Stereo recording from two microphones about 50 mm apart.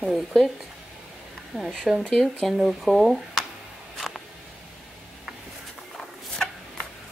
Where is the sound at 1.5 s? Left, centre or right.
Centre.